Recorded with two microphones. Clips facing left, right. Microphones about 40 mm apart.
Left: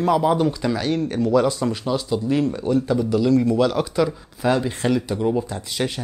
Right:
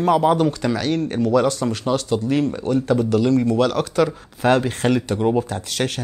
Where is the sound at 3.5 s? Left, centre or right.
Right.